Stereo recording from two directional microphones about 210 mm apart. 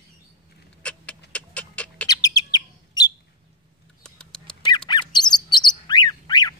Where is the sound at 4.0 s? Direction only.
5° left (ahead or behind).